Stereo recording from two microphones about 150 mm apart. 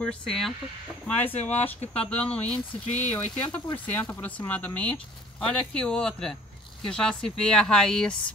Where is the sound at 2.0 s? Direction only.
10° left (ahead or behind).